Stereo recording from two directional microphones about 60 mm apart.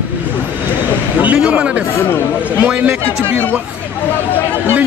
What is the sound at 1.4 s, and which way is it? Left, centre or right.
Speech, centre.